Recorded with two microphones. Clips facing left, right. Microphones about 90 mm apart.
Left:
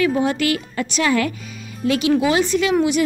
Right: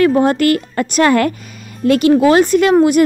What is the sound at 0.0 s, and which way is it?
A woman's voice, 50° right (ahead or behind).